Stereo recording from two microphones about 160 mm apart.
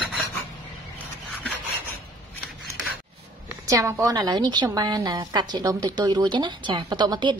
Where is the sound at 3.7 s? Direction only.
20° right (ahead or behind).